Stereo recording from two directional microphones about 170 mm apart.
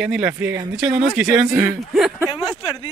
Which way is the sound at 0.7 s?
Centre (ahead or behind).